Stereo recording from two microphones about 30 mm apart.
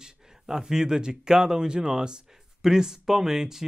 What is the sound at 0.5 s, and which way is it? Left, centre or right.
Speech, centre.